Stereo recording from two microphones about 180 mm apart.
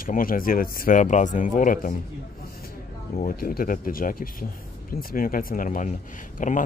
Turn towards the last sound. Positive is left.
turn(degrees=45)  # may be behind; listen again after turning